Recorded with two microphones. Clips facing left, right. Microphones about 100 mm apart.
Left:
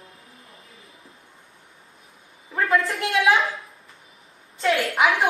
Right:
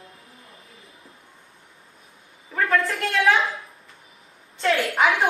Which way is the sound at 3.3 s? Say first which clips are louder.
Even; centre (ahead or behind).